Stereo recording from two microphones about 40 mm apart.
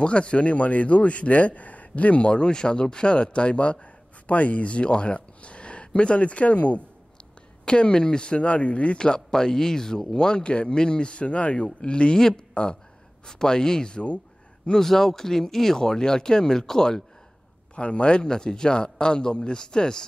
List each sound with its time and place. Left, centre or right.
0.0 s a man's voice: left
7.6 s speech: left
13.3 s speech: centre
14.8 s speech: centre
17.7 s speech: left